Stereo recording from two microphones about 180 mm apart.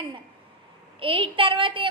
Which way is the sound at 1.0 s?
30° right (ahead or behind).